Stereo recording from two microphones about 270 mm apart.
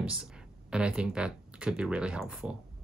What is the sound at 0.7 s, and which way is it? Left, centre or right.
Speech, centre.